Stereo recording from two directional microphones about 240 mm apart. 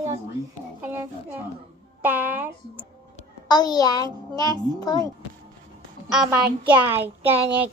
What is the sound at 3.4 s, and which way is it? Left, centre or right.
A child's voice, centre.